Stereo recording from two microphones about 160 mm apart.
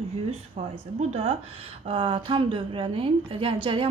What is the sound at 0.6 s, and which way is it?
A woman's voice, 40° right (ahead or behind).